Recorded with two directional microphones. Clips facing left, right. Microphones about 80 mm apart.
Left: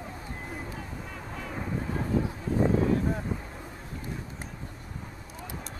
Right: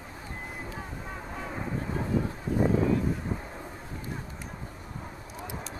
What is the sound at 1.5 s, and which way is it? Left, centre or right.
Vehicle, centre.